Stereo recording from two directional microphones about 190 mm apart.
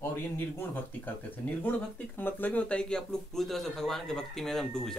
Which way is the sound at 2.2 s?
10° left (ahead or behind).